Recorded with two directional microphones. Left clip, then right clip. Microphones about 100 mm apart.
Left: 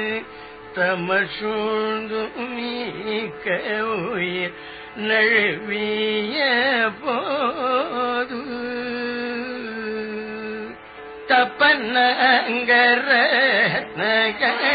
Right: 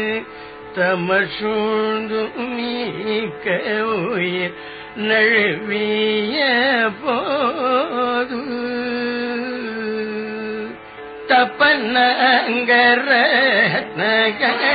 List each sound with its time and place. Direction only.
0.7 s carnatic music: 35° left (ahead or behind)
8.5 s music: 30° left (ahead or behind)
9.1 s music: 40° left (ahead or behind)
11.2 s carnatic music: 30° left (ahead or behind)